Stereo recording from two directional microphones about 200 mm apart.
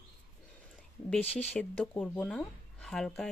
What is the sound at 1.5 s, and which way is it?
Speech, 5° left (ahead or behind).